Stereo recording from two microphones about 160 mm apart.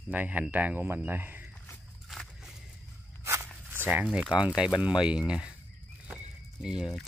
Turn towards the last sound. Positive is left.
turn(degrees=-5)  # may be behind; listen again after turning